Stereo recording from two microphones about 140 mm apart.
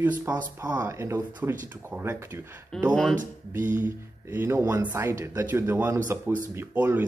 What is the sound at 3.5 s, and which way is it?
Speech, 15° right (ahead or behind).